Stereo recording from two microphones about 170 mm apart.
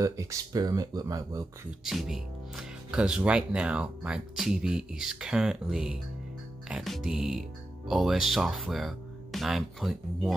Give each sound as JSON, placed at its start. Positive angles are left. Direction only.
{"t": 0.0, "sound": "speech", "side_deg": -20}
{"t": 1.9, "sound": "speech", "side_deg": 0}